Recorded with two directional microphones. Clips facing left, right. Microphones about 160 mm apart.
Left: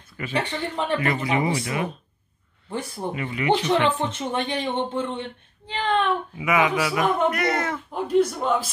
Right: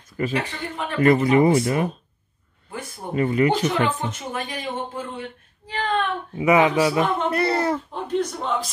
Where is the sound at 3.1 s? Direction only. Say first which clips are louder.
Right 4 dB; 40° right (ahead or behind).